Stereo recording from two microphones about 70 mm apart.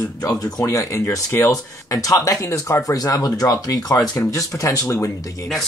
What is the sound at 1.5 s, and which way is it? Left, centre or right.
Speech, left.